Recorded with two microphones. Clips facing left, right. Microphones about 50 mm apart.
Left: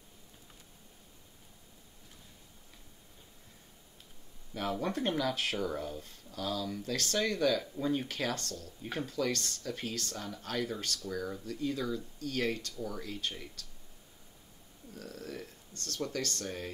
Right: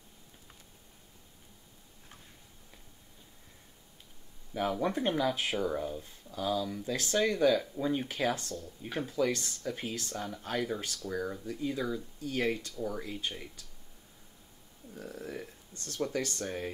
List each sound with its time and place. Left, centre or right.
4.6 s speech: centre
14.9 s speech: right